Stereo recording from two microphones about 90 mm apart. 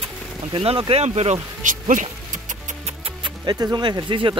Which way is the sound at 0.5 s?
90° right.